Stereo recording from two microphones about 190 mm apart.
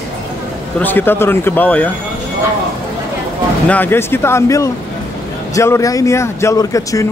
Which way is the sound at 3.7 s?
10° left (ahead or behind).